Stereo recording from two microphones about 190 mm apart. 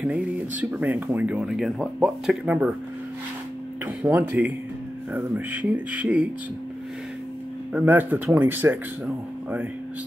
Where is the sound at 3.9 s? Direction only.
10° right (ahead or behind).